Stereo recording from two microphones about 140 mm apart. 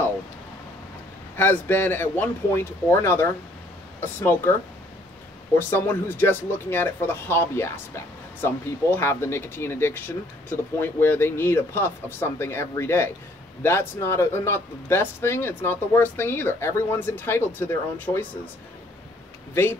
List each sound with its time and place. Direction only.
1.3 s speech: 15° left (ahead or behind)
5.6 s speech: 15° left (ahead or behind)